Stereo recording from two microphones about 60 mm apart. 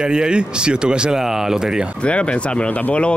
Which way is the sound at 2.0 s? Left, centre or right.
Centre.